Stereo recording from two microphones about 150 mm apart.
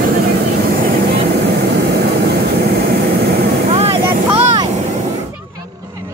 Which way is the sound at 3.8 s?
40° right (ahead or behind).